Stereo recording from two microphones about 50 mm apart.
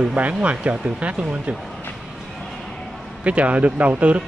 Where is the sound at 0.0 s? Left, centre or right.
Right.